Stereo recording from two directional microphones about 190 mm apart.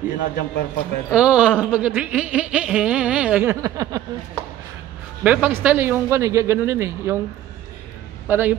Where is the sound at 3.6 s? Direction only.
15° right (ahead or behind).